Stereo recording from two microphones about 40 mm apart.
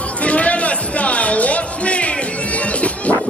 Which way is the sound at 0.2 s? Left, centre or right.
Left.